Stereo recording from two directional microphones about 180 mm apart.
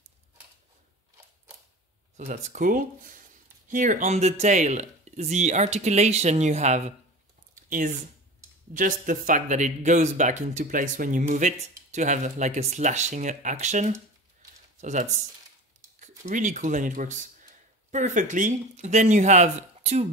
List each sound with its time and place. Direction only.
2.1 s speech: 40° right (ahead or behind)
7.5 s a sound: 45° right (ahead or behind)
8.7 s speech: 50° right (ahead or behind)